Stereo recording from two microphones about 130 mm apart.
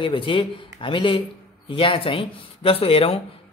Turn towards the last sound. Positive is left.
turn(degrees=45)  # may be behind; listen again after turning